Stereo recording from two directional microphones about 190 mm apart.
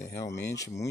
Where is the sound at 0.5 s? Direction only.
15° left (ahead or behind).